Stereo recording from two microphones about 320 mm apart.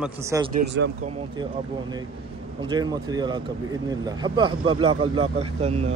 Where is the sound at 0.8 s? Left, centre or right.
Right.